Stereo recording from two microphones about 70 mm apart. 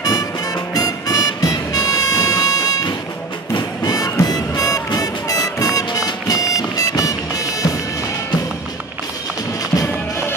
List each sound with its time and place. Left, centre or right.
0.0 s music: left
3.8 s music: left